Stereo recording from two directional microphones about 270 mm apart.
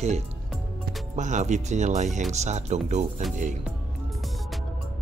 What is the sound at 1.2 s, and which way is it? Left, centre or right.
Speech, right.